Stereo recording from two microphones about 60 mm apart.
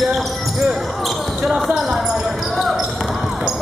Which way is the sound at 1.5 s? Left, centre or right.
Centre.